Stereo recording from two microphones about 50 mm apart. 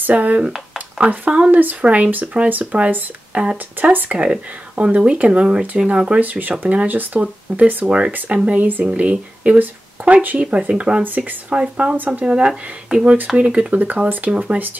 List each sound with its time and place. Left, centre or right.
0.0 s speech: right
8.8 s speech: right
14.3 s speech: centre